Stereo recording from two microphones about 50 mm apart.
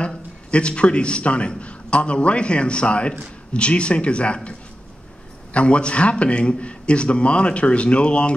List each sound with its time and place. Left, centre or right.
0.0 s a man's voice: left
5.5 s a man's voice: left